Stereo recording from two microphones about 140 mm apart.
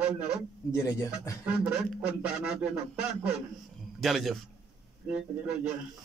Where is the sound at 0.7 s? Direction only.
20° left (ahead or behind).